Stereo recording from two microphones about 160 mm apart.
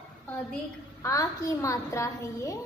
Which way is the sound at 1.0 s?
20° left (ahead or behind).